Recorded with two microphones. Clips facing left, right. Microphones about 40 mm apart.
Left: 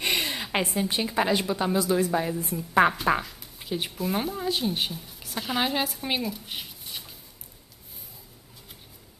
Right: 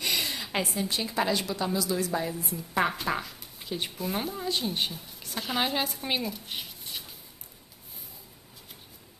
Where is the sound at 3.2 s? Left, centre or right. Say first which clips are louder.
Left 2 dB; centre.